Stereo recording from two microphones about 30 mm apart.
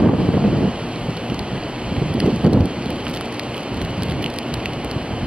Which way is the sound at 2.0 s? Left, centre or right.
Right.